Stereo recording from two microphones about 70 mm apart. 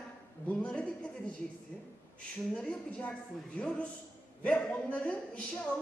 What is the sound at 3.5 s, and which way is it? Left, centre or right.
A woman's voice, centre.